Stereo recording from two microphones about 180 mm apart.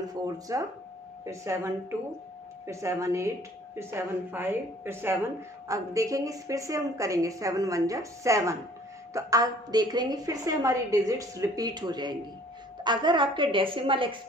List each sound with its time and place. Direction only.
0.1 s a woman's voice: 20° right (ahead or behind)